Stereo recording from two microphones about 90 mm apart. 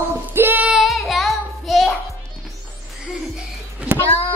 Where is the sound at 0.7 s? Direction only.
Centre (ahead or behind).